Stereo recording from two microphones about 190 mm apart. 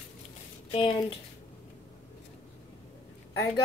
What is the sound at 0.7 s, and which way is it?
Speech, 30° left (ahead or behind).